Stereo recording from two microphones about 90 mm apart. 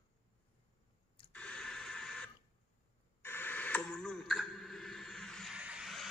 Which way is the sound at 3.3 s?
25° left (ahead or behind).